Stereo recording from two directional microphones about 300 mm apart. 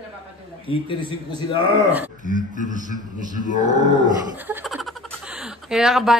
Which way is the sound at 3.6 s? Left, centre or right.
Centre.